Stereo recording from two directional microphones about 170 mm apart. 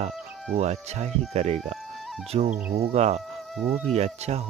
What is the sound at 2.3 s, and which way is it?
Cricket, 40° right (ahead or behind).